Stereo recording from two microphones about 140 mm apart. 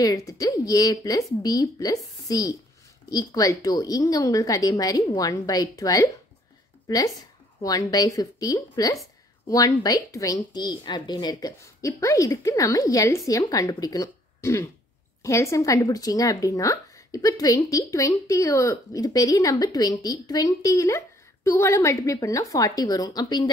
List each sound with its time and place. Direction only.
0.0 s a woman's voice: 25° left (ahead or behind)